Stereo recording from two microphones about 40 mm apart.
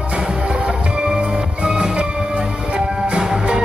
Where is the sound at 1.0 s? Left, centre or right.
Right.